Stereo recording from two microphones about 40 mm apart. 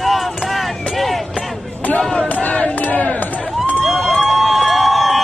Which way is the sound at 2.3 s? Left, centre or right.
Left.